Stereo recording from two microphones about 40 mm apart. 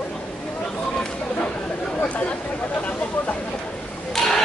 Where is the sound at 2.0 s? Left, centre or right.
Left.